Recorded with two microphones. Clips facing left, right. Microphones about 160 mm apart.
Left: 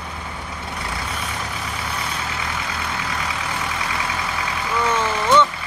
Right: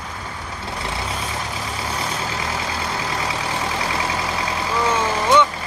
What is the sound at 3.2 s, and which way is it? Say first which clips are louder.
Vehicle: right 2 dB; 30° right (ahead or behind).